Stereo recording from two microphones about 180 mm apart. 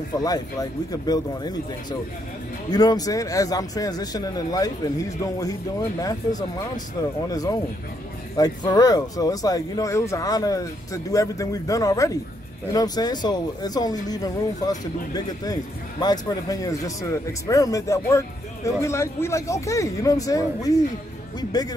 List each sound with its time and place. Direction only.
0.2 s speech: 20° left (ahead or behind)